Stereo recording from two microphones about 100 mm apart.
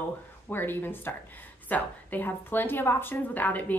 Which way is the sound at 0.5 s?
20° left (ahead or behind).